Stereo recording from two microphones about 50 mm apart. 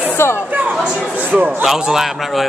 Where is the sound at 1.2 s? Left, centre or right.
Right.